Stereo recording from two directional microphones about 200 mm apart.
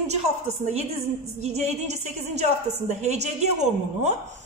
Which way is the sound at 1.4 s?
35° right (ahead or behind).